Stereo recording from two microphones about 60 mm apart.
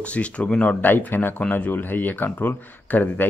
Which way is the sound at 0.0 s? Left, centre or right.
Left.